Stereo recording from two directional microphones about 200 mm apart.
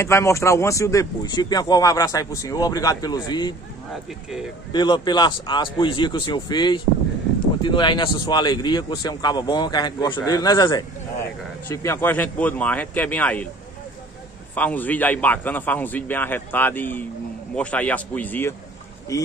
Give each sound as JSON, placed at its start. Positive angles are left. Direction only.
{"t": 0.0, "sound": "speech", "side_deg": 15}
{"t": 3.9, "sound": "speech", "side_deg": 0}
{"t": 4.7, "sound": "a man's voice", "side_deg": 20}
{"t": 14.5, "sound": "speech", "side_deg": 10}